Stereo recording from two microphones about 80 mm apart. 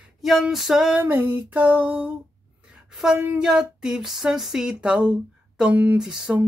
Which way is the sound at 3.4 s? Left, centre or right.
Centre.